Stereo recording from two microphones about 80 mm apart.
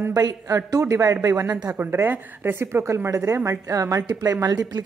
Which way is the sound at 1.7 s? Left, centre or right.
Right.